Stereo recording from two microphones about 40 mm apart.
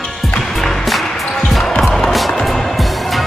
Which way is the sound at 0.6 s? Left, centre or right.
Centre.